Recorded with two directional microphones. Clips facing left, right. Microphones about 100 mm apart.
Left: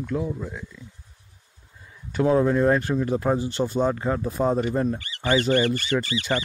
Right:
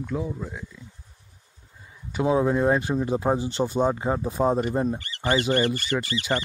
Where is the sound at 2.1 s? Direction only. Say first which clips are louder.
Left 2 dB; 10° right (ahead or behind).